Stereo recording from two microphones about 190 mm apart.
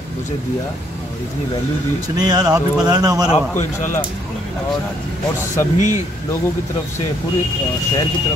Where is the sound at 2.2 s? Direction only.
20° right (ahead or behind).